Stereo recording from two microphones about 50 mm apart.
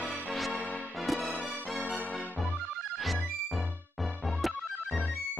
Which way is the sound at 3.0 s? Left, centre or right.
Centre.